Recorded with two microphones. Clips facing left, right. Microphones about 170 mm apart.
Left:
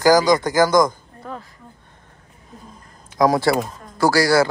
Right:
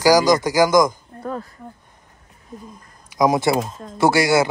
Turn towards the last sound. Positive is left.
turn(degrees=-20)  # may be behind; listen again after turning